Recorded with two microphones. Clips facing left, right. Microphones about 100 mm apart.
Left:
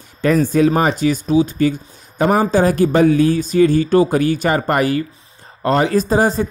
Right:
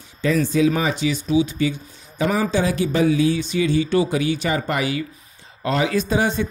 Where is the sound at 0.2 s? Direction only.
50° left (ahead or behind).